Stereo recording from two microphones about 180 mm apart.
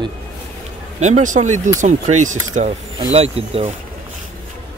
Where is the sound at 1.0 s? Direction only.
40° right (ahead or behind).